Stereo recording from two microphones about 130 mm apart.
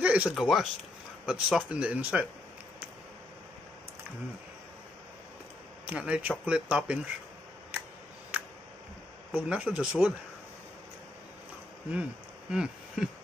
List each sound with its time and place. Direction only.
0.0 s speech: 10° right (ahead or behind)
5.9 s speech: 5° right (ahead or behind)
9.3 s speech: 10° right (ahead or behind)
11.9 s speech: 5° right (ahead or behind)